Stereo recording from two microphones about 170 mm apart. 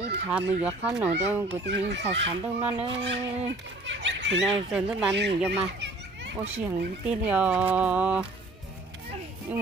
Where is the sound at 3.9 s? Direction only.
90° right.